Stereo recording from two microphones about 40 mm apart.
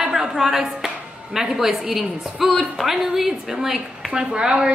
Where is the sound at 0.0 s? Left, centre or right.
Centre.